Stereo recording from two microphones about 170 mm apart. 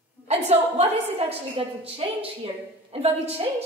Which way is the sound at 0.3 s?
40° right (ahead or behind).